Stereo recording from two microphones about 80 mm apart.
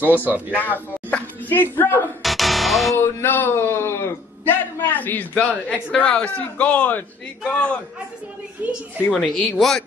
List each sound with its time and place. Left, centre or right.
0.0 s speech: right
0.5 s a man's voice: left
2.2 s music: centre
3.0 s a man's voice: left
8.6 s speech: right
9.2 s a man's voice: centre